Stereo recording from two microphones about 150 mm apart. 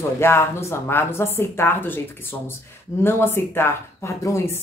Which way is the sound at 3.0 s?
15° left (ahead or behind).